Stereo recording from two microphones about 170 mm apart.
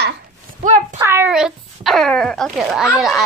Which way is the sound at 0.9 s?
15° right (ahead or behind).